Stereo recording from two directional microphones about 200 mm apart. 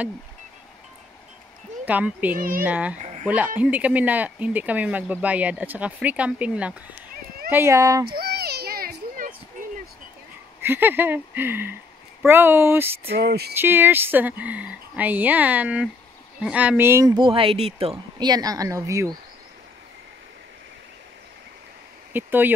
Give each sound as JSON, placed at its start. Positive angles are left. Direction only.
{"t": 1.9, "sound": "speech", "side_deg": -10}
{"t": 2.3, "sound": "a sound", "side_deg": -45}
{"t": 2.6, "sound": "speech", "side_deg": -5}
{"t": 3.0, "sound": "a sound", "side_deg": -35}
{"t": 3.3, "sound": "speech", "side_deg": -5}
{"t": 8.2, "sound": "children playing", "side_deg": -50}
{"t": 10.6, "sound": "speech", "side_deg": -10}
{"t": 13.1, "sound": "a sound", "side_deg": -55}
{"t": 13.6, "sound": "speech", "side_deg": -10}
{"t": 22.1, "sound": "speech", "side_deg": -10}